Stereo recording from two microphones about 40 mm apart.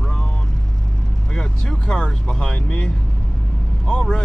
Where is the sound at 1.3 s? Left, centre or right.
Centre.